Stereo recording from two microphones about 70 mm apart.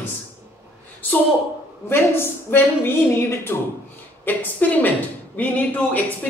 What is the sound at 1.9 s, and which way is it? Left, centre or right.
A woman's voice, left.